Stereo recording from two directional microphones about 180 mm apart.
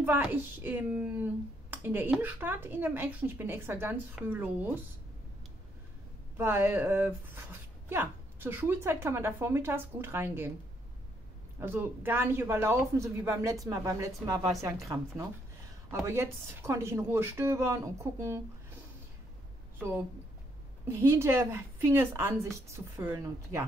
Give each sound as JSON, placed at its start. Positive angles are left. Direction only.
{"t": 0.0, "sound": "speech", "side_deg": -10}
{"t": 6.3, "sound": "speech", "side_deg": -10}
{"t": 11.6, "sound": "speech", "side_deg": -10}
{"t": 15.9, "sound": "speech", "side_deg": -15}
{"t": 20.9, "sound": "speech", "side_deg": -15}